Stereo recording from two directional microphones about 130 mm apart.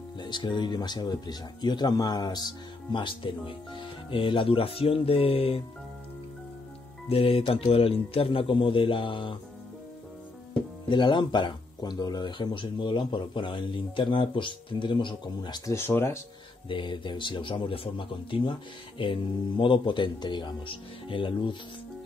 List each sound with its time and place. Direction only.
0.2 s speech: 35° left (ahead or behind)
7.1 s speech: 50° left (ahead or behind)
10.9 s speech: 40° left (ahead or behind)
15.7 s speech: 20° left (ahead or behind)
16.6 s speech: 40° left (ahead or behind)